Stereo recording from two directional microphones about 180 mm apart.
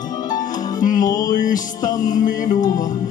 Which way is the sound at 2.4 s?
20° left (ahead or behind).